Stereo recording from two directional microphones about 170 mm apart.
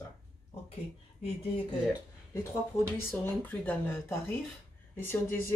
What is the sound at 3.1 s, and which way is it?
Speech, 10° left (ahead or behind).